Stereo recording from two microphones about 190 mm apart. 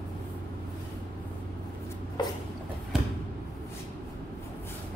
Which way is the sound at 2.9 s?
5° right (ahead or behind).